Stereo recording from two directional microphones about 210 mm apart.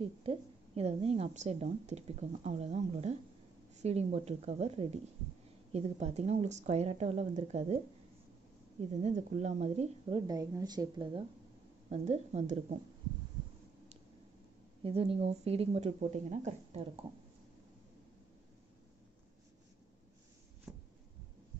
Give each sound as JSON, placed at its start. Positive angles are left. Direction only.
{"t": 0.0, "sound": "a woman's voice", "side_deg": -25}
{"t": 9.0, "sound": "speech", "side_deg": -30}
{"t": 11.9, "sound": "a woman's voice", "side_deg": -30}
{"t": 14.8, "sound": "speech", "side_deg": -25}
{"t": 20.7, "sound": "a sound", "side_deg": -5}